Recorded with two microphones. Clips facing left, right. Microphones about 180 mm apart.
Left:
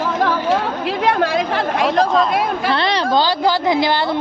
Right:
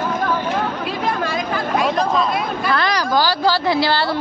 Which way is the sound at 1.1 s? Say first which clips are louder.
Left 6 dB; 65° left (ahead or behind).